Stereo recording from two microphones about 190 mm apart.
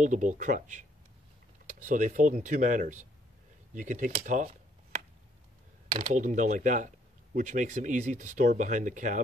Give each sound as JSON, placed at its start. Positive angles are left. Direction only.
{"t": 0.0, "sound": "speech", "side_deg": -40}
{"t": 1.9, "sound": "speech", "side_deg": -40}
{"t": 5.9, "sound": "speech", "side_deg": -40}